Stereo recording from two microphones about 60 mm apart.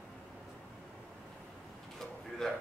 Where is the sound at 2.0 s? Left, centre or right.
Centre.